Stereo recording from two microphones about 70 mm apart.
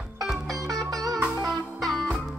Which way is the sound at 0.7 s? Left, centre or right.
Right.